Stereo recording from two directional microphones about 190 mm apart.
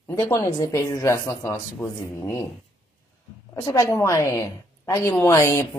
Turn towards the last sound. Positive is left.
turn(degrees=15)  # may be behind; listen again after turning